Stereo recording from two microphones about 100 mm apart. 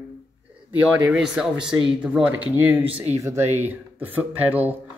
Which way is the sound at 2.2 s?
20° right (ahead or behind).